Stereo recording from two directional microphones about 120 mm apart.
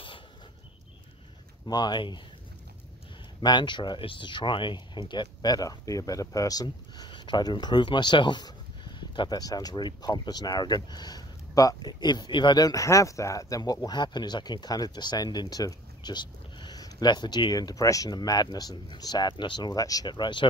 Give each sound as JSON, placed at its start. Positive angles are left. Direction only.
{"t": 1.7, "sound": "speech", "side_deg": 35}
{"t": 3.3, "sound": "speech", "side_deg": 40}